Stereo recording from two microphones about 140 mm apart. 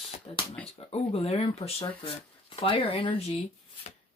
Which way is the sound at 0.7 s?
45° left (ahead or behind).